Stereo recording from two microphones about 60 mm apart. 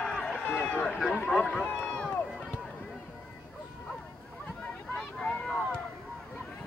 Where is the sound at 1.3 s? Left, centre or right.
Centre.